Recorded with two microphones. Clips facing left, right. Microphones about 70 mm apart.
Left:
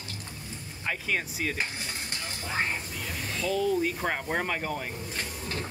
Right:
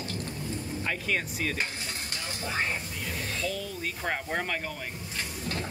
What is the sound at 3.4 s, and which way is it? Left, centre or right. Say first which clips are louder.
Speech: left 12 dB; centre.